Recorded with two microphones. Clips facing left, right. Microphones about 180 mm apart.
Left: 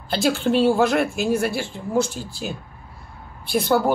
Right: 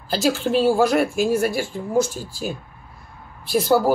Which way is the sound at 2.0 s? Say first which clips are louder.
Right 1 dB; 45° right (ahead or behind).